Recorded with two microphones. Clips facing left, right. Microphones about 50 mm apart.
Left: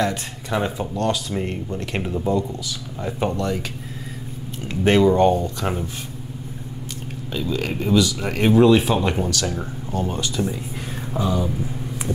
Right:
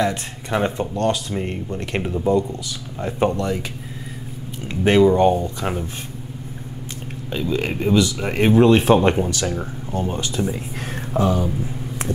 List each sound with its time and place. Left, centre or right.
0.0 s speech: centre
4.6 s speech: centre
7.3 s speech: right
9.3 s speech: right
10.4 s speech: centre
11.1 s a sound: right